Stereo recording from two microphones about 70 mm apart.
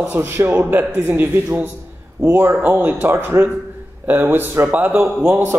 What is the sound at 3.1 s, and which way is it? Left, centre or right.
A man's voice, right.